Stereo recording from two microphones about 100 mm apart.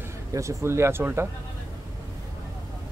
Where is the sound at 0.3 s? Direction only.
30° right (ahead or behind).